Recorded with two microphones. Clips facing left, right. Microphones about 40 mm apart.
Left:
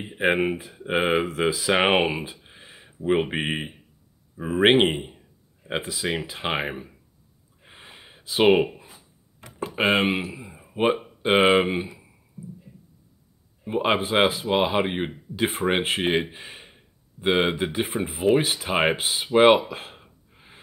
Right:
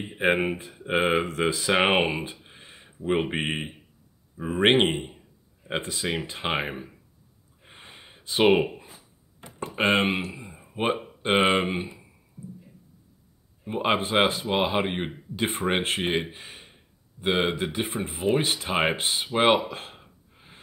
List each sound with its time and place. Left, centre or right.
0.0 s speech: centre
2.4 s a sound: centre
4.4 s speech: centre
7.6 s a sound: centre
9.7 s speech: centre
13.7 s speech: centre
19.7 s gasp: centre